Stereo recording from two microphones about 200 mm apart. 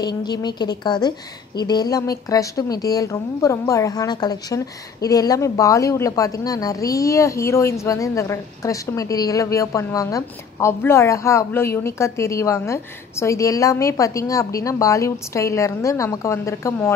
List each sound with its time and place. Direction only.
0.0 s a woman's voice: 20° left (ahead or behind)